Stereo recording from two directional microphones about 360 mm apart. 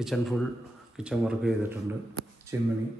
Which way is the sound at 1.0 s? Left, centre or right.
Centre.